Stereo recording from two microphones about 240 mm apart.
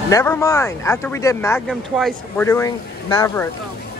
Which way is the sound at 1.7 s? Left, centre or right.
Centre.